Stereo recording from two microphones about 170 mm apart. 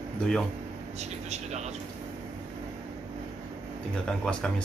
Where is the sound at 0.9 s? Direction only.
40° right (ahead or behind).